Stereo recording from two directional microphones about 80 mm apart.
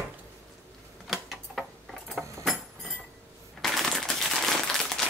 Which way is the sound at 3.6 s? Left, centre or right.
Centre.